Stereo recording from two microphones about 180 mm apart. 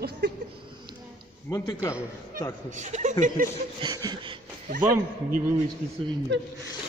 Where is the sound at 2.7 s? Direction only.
40° right (ahead or behind).